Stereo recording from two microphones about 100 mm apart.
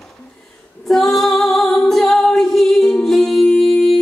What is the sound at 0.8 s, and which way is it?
Female singing, centre (ahead or behind).